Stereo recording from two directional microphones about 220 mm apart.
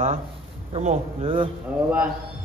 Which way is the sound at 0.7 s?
30° right (ahead or behind).